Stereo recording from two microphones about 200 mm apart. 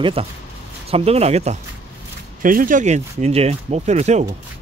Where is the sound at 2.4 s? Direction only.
45° right (ahead or behind).